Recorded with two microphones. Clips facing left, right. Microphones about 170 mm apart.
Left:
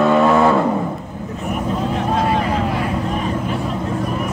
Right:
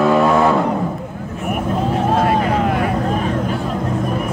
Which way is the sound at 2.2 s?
55° right (ahead or behind).